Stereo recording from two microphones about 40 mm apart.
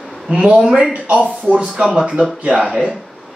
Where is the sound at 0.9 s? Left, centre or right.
Right.